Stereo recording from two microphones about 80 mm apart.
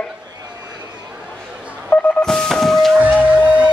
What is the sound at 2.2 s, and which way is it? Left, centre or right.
Music, centre.